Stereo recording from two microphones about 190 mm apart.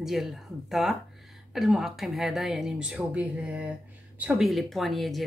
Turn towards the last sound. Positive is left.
turn(degrees=0)  # may be behind; listen again after turning